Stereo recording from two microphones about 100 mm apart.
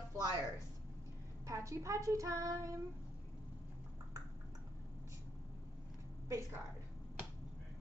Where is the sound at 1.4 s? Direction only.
30° right (ahead or behind).